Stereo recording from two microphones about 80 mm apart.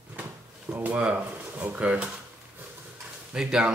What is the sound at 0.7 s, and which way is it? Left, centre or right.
Speech, right.